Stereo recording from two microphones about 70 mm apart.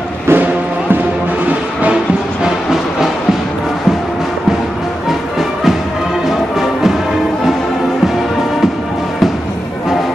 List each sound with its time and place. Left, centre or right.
0.3 s music: right
2.4 s train: centre